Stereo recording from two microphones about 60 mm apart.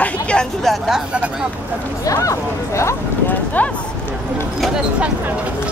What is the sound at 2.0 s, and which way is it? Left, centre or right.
Speech, left.